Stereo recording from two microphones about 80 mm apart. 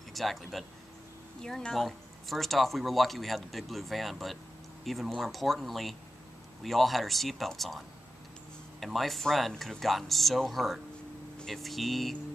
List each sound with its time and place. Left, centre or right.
0.1 s speech: centre